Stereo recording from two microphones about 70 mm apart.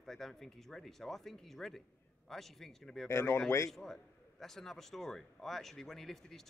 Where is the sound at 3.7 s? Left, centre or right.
Centre.